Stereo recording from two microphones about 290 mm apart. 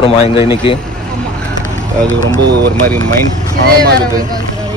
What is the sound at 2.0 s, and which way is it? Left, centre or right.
Speech, right.